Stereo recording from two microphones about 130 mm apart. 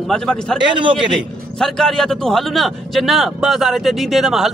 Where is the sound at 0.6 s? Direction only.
40° right (ahead or behind).